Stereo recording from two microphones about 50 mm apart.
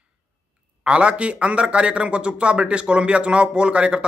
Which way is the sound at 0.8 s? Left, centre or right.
Right.